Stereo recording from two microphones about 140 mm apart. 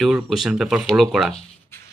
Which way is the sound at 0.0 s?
Centre (ahead or behind).